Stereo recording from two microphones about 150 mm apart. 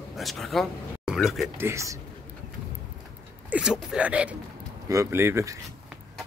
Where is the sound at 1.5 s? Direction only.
20° right (ahead or behind).